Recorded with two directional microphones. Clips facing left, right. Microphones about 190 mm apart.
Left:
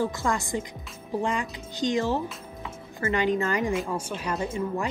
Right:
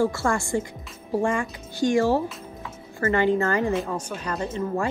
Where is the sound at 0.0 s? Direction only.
15° left (ahead or behind).